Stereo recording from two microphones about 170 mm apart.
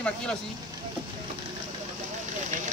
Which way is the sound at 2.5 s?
50° right (ahead or behind).